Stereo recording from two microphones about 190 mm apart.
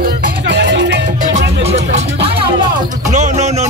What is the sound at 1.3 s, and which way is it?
Music, 35° right (ahead or behind).